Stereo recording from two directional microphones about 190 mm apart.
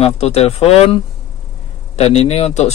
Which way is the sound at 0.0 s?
35° left (ahead or behind).